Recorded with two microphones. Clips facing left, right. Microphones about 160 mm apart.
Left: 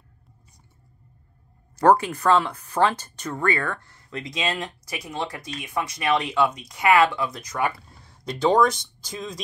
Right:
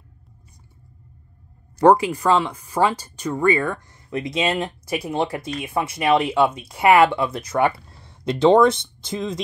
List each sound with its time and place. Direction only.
1.8 s speech: 10° right (ahead or behind)